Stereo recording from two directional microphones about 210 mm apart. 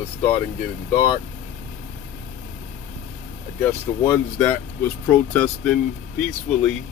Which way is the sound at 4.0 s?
10° left (ahead or behind).